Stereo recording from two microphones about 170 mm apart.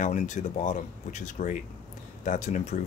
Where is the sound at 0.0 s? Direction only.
45° left (ahead or behind).